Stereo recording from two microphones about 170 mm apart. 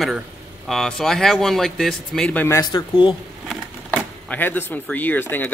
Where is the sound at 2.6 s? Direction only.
25° left (ahead or behind).